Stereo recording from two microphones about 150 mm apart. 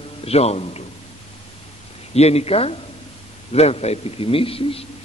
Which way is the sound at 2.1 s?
45° left (ahead or behind).